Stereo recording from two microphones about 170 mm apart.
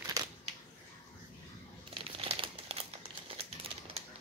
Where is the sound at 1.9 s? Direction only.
35° right (ahead or behind).